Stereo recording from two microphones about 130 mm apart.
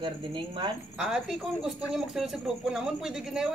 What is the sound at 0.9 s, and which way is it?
Speech, 5° right (ahead or behind).